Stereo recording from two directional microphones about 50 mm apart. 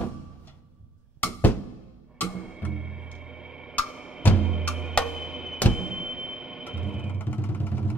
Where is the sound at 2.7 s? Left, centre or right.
Centre.